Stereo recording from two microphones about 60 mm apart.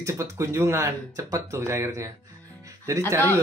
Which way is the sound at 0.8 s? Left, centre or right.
Right.